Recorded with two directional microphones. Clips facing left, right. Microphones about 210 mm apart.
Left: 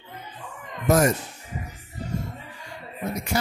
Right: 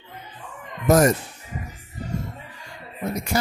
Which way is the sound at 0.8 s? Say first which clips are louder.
Right 3 dB; 40° right (ahead or behind).